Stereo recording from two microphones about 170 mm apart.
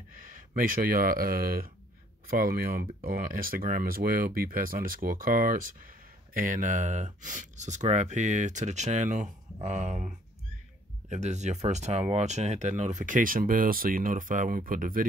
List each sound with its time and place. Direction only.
0.6 s speech: 55° right (ahead or behind)
11.1 s speech: 45° right (ahead or behind)